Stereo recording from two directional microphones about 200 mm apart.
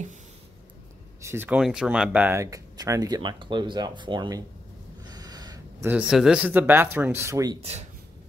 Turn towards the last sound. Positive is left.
turn(degrees=-15)  # may be behind; listen again after turning